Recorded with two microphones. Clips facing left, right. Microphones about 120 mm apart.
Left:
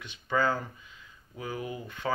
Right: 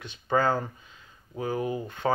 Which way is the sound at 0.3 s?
40° right (ahead or behind).